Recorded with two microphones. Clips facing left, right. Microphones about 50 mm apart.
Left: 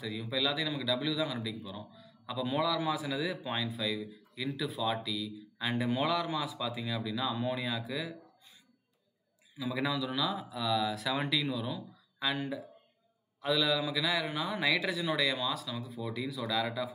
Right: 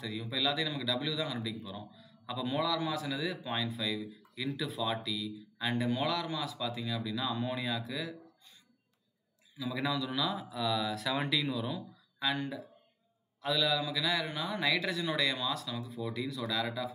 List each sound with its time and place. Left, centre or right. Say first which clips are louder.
0.0 s a man's voice: left 1 dB; centre
9.6 s a man's voice: left 1 dB; centre